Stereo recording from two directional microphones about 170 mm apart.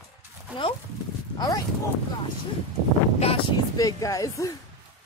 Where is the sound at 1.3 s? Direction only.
25° left (ahead or behind).